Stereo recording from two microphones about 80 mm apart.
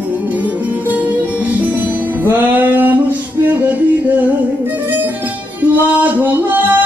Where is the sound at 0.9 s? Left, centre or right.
Centre.